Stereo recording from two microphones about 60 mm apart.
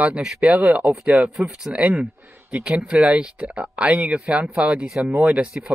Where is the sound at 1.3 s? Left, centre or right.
Centre.